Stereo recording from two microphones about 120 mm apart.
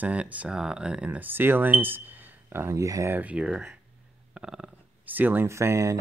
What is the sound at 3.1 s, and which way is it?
Speech, 10° right (ahead or behind).